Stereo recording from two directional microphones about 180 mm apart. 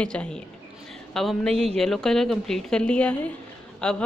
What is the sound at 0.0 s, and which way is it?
A woman's voice, 5° left (ahead or behind).